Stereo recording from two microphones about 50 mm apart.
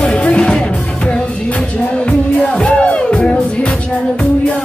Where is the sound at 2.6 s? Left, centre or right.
Left.